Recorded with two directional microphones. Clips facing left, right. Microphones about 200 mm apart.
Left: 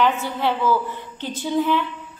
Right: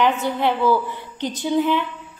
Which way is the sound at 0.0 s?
15° right (ahead or behind).